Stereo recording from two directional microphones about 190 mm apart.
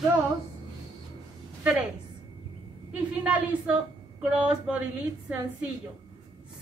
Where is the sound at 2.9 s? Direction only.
10° right (ahead or behind).